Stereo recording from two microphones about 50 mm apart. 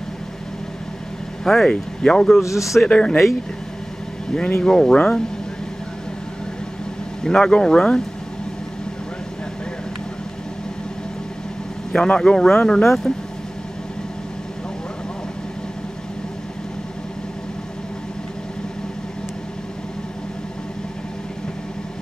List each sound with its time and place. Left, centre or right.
1.4 s speech: centre
2.4 s speech: left
2.9 s speech: centre
4.3 s speech: centre
7.2 s speech: centre
11.9 s speech: centre